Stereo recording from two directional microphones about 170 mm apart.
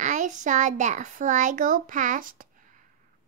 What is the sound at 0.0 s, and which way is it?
A child's voice, 45° right (ahead or behind).